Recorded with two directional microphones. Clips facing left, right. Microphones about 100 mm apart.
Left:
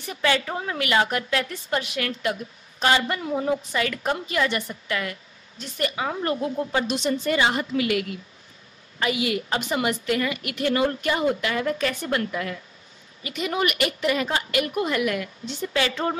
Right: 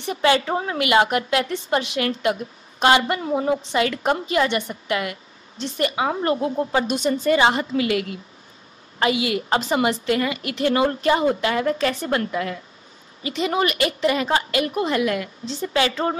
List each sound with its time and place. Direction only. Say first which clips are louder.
0.0 s a woman's voice: right 5 dB; 25° right (ahead or behind)